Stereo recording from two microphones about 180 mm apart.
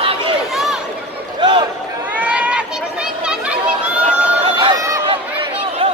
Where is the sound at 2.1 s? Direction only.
10° right (ahead or behind).